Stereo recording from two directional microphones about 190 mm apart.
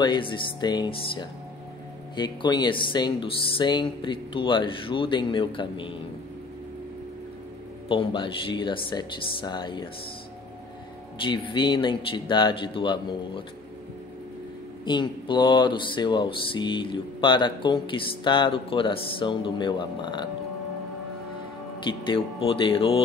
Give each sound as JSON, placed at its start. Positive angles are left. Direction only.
{"t": 0.0, "sound": "music", "side_deg": 25}
{"t": 7.9, "sound": "music", "side_deg": 25}
{"t": 11.2, "sound": "music", "side_deg": 25}
{"t": 14.9, "sound": "music", "side_deg": 25}
{"t": 21.8, "sound": "music", "side_deg": 25}